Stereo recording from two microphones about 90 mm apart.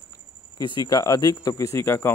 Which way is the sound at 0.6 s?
55° left (ahead or behind).